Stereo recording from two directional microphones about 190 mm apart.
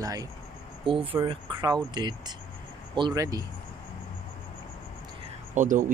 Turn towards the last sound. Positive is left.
turn(degrees=-40)  # may be behind; listen again after turning